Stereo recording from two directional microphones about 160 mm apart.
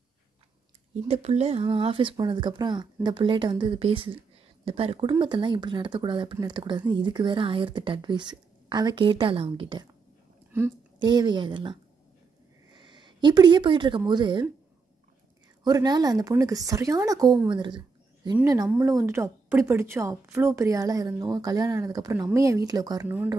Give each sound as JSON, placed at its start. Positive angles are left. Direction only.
{"t": 1.0, "sound": "a woman's voice", "side_deg": -40}
{"t": 11.0, "sound": "a woman's voice", "side_deg": -25}
{"t": 15.6, "sound": "a woman's voice", "side_deg": -25}
{"t": 23.0, "sound": "speech", "side_deg": -10}